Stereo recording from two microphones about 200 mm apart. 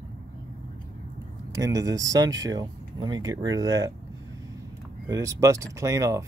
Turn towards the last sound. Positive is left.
turn(degrees=-15)  # may be behind; listen again after turning